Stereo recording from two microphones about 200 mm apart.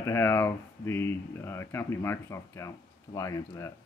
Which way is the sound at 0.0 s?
10° left (ahead or behind).